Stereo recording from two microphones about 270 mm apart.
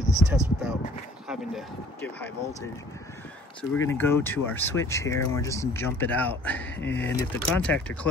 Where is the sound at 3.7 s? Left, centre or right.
Centre.